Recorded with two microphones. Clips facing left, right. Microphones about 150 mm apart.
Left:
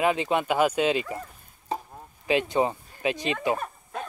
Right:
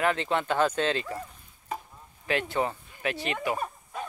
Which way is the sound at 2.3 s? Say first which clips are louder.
Left 4 dB; 15° left (ahead or behind).